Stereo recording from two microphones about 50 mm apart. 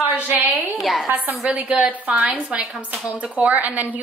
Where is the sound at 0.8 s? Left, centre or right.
Centre.